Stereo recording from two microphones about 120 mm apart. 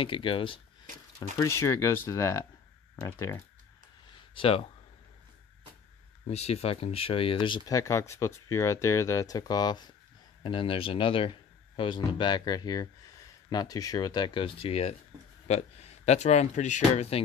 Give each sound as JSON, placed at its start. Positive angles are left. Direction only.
{"t": 0.0, "sound": "speech", "side_deg": 45}
{"t": 1.4, "sound": "speech", "side_deg": 25}
{"t": 4.4, "sound": "speech", "side_deg": 50}
{"t": 6.2, "sound": "speech", "side_deg": 60}
{"t": 10.4, "sound": "speech", "side_deg": 45}